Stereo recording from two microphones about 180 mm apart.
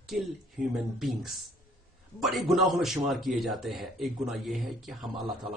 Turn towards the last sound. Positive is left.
turn(degrees=0)  # may be behind; listen again after turning